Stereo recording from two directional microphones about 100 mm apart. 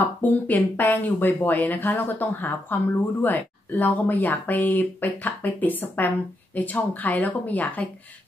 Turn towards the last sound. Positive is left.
turn(degrees=15)  # may be behind; listen again after turning